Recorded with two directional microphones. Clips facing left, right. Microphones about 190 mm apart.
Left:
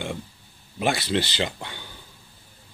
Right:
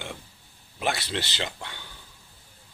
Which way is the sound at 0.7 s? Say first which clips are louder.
Left 5 dB; 10° left (ahead or behind).